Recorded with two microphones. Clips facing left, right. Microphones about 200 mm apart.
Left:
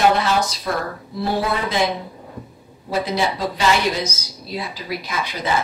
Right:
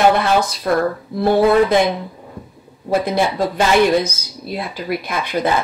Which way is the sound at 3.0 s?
55° right (ahead or behind).